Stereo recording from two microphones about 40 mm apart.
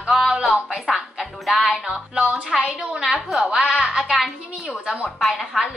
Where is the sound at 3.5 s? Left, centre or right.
Centre.